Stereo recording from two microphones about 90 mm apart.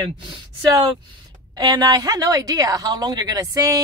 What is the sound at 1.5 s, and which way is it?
A woman's voice, 45° right (ahead or behind).